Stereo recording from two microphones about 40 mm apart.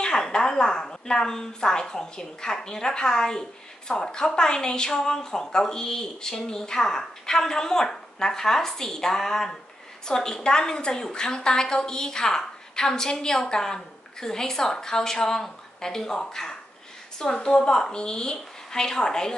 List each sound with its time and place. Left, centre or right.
0.0 s a woman's voice: left